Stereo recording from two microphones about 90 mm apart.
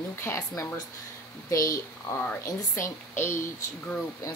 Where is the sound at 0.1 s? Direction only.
30° left (ahead or behind).